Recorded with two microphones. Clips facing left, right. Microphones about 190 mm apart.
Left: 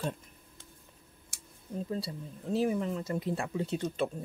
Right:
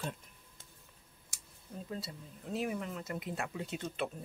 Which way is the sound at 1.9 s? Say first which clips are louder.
Left 7 dB; 30° left (ahead or behind).